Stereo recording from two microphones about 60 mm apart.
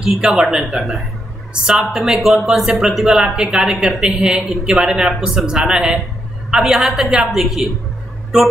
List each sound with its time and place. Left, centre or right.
0.2 s speech: centre